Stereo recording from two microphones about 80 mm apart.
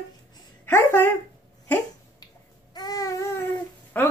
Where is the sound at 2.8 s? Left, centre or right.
Left.